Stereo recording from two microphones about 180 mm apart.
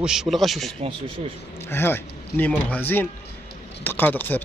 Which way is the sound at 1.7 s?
10° left (ahead or behind).